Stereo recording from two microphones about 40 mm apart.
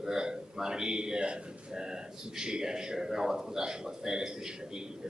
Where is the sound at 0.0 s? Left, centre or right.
Centre.